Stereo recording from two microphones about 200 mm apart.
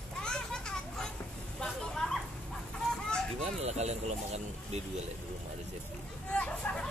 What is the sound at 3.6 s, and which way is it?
Speech, 35° right (ahead or behind).